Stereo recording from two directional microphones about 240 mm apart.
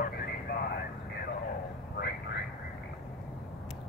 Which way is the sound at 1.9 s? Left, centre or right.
Left.